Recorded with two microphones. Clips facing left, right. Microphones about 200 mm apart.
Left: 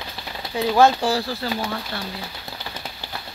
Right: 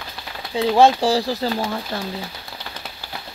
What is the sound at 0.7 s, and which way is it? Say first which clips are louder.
Speech: right 2 dB; 30° right (ahead or behind).